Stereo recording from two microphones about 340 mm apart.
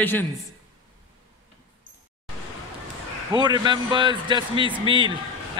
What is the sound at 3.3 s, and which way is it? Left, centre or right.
Speech, centre.